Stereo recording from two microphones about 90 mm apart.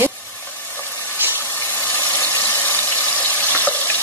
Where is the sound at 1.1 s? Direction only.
25° right (ahead or behind).